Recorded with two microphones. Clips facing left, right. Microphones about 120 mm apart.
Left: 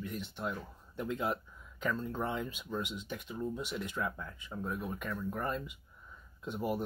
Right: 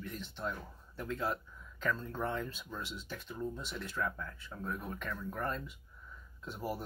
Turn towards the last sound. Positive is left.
turn(degrees=15)  # may be behind; listen again after turning